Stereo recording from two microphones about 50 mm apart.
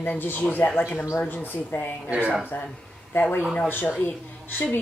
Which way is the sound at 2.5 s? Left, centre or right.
Left.